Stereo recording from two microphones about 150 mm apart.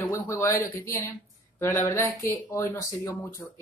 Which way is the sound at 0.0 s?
15° left (ahead or behind).